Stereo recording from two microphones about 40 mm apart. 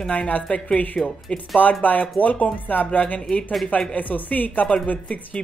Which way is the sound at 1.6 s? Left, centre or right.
Left.